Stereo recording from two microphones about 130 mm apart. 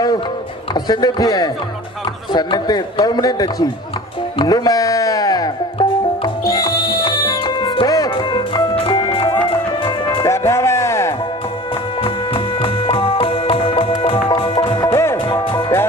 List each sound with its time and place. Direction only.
0.7 s a man's voice: 35° left (ahead or behind)
4.4 s music: 30° left (ahead or behind)
10.2 s music: 20° left (ahead or behind)
12.0 s music: 45° left (ahead or behind)
14.9 s music: 20° left (ahead or behind)